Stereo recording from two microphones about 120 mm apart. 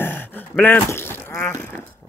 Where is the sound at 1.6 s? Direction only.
20° left (ahead or behind).